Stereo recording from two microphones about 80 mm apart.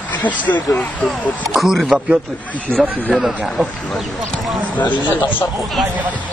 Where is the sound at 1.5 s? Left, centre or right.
Centre.